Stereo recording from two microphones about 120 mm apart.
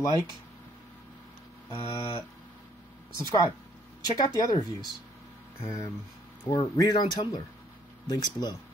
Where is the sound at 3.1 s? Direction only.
30° left (ahead or behind).